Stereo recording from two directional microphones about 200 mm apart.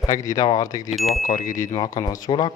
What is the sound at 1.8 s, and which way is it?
Speech, 20° left (ahead or behind).